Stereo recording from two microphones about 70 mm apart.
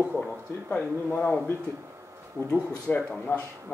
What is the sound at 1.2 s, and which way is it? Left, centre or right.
Speech, centre.